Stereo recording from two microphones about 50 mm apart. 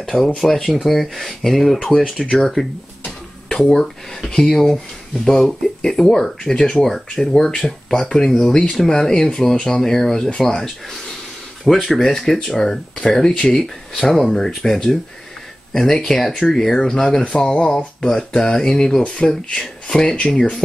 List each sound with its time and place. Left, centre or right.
0.0 s speech: centre
3.4 s a sound: centre
3.7 s speech: centre